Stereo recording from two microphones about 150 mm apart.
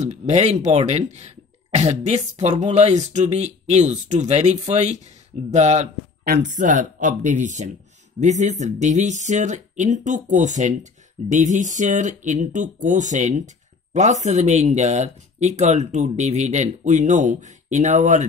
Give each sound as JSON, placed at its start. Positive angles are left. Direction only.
{"t": 0.0, "sound": "speech", "side_deg": -50}
{"t": 6.2, "sound": "speech", "side_deg": -75}